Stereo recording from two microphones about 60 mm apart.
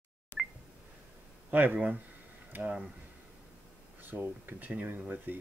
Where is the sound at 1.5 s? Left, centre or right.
Right.